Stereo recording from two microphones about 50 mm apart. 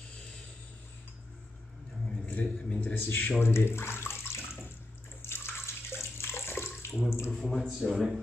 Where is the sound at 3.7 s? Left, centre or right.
Left.